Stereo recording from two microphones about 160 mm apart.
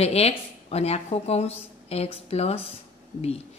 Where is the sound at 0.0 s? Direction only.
40° left (ahead or behind).